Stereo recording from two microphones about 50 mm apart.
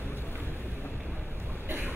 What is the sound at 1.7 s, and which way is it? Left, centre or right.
Vehicle, right.